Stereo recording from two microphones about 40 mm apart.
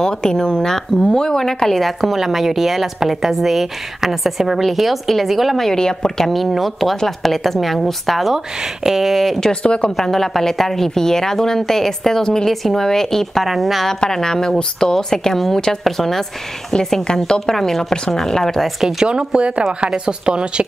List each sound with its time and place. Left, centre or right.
0.0 s a woman's voice: centre
5.7 s a woman's voice: centre
6.3 s a woman's voice: centre
9.5 s speech: left
9.9 s a woman's voice: centre
14.1 s a woman's voice: centre
16.7 s speech: left
17.3 s a woman's voice: centre
18.6 s speech: centre
19.0 s a woman's voice: right